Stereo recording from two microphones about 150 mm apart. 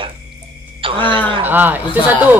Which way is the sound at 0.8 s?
35° right (ahead or behind).